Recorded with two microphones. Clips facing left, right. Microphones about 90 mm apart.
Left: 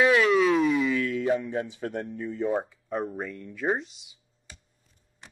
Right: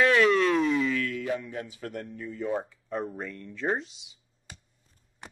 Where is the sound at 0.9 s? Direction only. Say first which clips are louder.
Left 3 dB; 20° left (ahead or behind).